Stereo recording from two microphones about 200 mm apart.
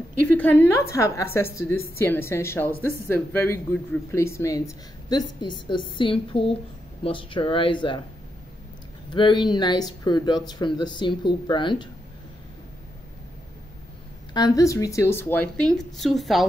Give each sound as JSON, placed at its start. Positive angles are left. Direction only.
{"t": 0.4, "sound": "a woman's voice", "side_deg": 10}
{"t": 9.1, "sound": "speech", "side_deg": 25}
{"t": 14.3, "sound": "a woman's voice", "side_deg": 20}